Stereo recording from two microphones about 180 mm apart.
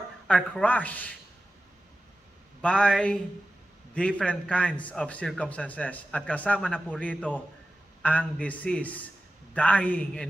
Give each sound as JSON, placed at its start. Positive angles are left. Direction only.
{"t": 0.3, "sound": "speech", "side_deg": 5}
{"t": 2.6, "sound": "speech", "side_deg": 5}
{"t": 4.2, "sound": "a man's voice", "side_deg": 5}